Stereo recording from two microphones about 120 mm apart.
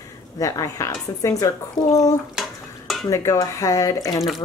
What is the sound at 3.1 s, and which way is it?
Speech, 25° left (ahead or behind).